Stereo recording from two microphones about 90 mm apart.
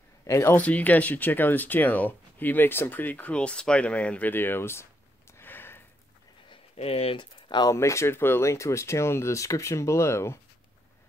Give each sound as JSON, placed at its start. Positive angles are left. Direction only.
{"t": 0.3, "sound": "speech", "side_deg": 30}
{"t": 0.6, "sound": "speech", "side_deg": 15}
{"t": 5.4, "sound": "a sound", "side_deg": 25}
{"t": 6.5, "sound": "speech", "side_deg": 90}
{"t": 7.6, "sound": "speech", "side_deg": 35}